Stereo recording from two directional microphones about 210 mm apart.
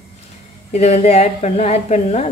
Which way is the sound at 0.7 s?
30° left (ahead or behind).